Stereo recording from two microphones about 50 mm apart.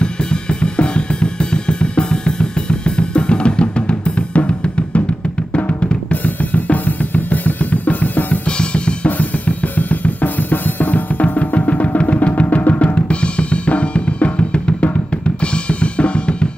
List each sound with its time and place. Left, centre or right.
0.0 s drum kit: centre; by 8.4 s left
8.5 s drum kit: left
9.2 s drum kit: left